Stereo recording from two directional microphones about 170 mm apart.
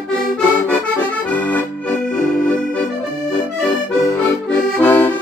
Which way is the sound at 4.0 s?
15° left (ahead or behind).